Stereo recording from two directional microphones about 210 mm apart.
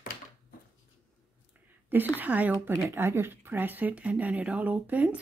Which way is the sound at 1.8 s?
10° right (ahead or behind).